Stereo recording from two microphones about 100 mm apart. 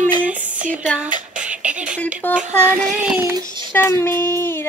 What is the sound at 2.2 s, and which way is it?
Child singing, 20° left (ahead or behind).